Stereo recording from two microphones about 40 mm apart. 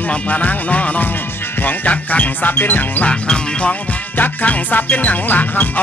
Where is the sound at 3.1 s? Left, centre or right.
Left.